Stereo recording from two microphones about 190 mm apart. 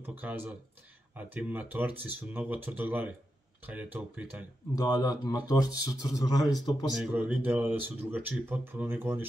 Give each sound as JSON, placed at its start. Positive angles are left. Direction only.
{"t": 0.0, "sound": "speech", "side_deg": -10}
{"t": 4.7, "sound": "speech", "side_deg": 20}
{"t": 6.9, "sound": "speech", "side_deg": -5}